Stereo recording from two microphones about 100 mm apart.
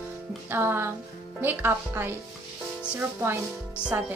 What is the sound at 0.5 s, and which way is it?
Speech, 20° right (ahead or behind).